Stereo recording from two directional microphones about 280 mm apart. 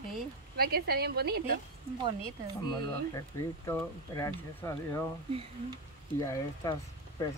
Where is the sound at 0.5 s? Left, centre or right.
Right.